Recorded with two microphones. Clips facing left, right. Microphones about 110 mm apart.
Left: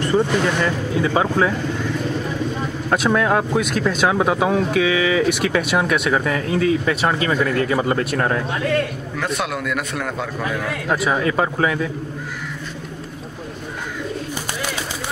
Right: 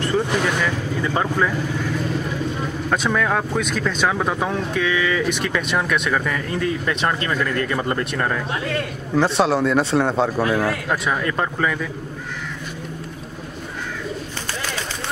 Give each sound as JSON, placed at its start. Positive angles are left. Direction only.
{"t": 0.1, "sound": "speech", "side_deg": 20}
{"t": 0.9, "sound": "speech", "side_deg": 10}
{"t": 2.9, "sound": "speech", "side_deg": 10}
{"t": 9.1, "sound": "a man's voice", "side_deg": -30}
{"t": 10.9, "sound": "speech", "side_deg": 10}